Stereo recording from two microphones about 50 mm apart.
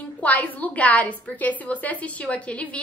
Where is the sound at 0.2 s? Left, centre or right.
Left.